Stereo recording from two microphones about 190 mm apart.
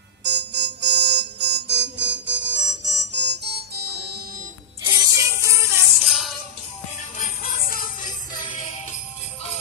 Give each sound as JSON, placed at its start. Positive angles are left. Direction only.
{"t": 0.2, "sound": "music", "side_deg": -65}
{"t": 4.8, "sound": "music", "side_deg": -20}
{"t": 5.9, "sound": "music", "side_deg": 0}
{"t": 7.2, "sound": "music", "side_deg": 45}